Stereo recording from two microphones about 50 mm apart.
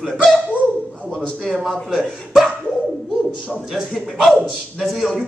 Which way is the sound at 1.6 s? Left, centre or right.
Centre.